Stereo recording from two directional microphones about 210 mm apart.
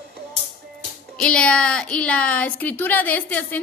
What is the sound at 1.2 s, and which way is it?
Speech, 5° left (ahead or behind).